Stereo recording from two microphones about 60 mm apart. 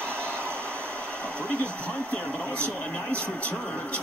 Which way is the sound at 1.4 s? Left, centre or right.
Left.